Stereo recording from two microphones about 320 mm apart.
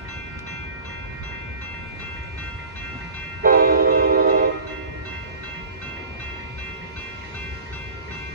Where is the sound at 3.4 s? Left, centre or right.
Right.